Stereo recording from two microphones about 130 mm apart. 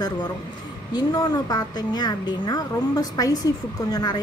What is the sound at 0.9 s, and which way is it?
A woman's voice, 30° left (ahead or behind).